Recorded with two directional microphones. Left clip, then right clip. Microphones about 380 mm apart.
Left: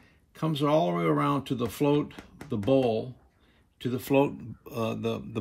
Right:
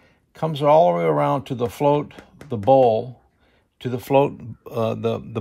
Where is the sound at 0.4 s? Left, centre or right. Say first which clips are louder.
Right 10 dB; centre.